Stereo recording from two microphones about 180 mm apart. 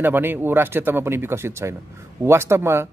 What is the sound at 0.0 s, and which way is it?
A man's voice, 10° right (ahead or behind).